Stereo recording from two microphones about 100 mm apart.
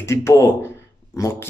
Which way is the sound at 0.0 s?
30° left (ahead or behind).